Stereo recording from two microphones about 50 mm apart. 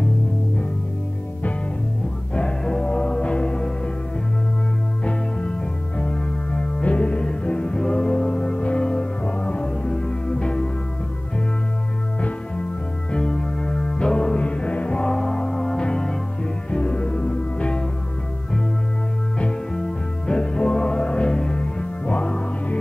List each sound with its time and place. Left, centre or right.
2.3 s music: centre
5.0 s music: left
12.2 s music: left
19.3 s music: centre